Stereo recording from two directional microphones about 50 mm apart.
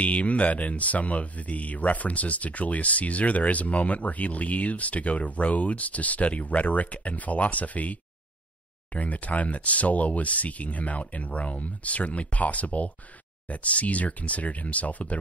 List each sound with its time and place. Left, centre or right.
0.0 s speech: left